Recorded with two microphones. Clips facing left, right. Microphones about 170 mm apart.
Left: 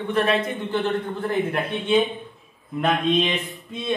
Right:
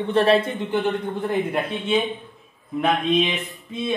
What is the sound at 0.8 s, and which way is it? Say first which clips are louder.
Speech: right 1 dB; 15° right (ahead or behind).